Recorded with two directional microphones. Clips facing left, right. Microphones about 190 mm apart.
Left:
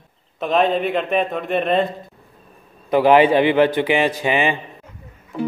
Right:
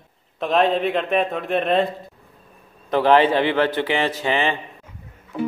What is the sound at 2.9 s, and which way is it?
A man's voice, 10° left (ahead or behind).